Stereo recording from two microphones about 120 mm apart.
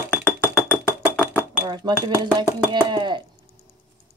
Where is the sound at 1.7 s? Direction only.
35° right (ahead or behind).